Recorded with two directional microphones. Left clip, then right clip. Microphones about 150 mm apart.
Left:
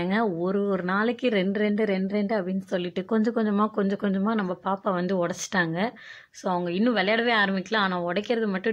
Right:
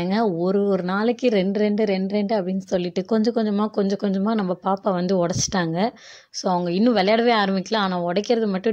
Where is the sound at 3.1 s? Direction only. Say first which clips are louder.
Right 3 dB; 20° right (ahead or behind).